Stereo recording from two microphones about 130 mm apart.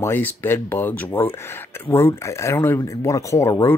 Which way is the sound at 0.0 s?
15° left (ahead or behind).